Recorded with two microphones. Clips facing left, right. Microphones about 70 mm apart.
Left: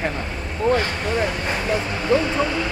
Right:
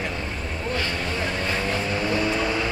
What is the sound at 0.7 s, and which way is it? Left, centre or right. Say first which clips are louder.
Speech: left 6 dB; left.